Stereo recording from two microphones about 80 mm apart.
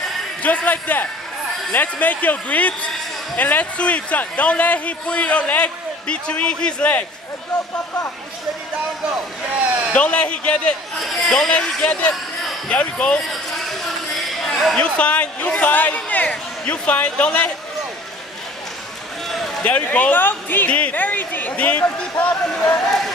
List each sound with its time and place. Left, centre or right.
0.4 s a man's voice: centre
9.7 s a man's voice: centre
9.9 s a man's voice: centre
11.0 s a man's voice: centre
13.3 s a sound: centre
14.8 s a man's voice: centre
19.2 s a sound: centre
19.6 s speech: left
22.8 s speech: centre